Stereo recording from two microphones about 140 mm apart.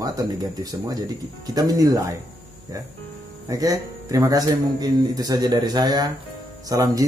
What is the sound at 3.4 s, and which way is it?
Speech, 25° right (ahead or behind).